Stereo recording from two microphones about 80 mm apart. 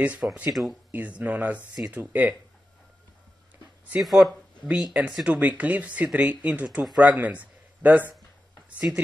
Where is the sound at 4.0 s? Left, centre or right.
Centre.